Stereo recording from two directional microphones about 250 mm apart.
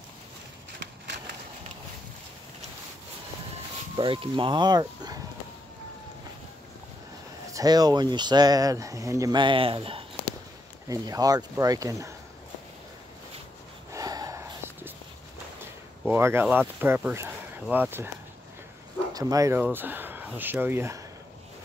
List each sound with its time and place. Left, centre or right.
3.9 s speech: right
7.5 s speech: centre
13.9 s a sound: centre
16.0 s speech: centre
19.1 s speech: centre